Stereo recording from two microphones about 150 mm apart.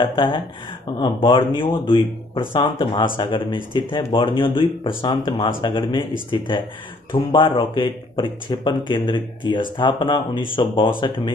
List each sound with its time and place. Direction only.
0.0 s speech: 35° left (ahead or behind)